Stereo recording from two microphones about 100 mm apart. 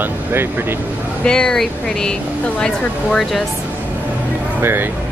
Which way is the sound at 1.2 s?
5° left (ahead or behind).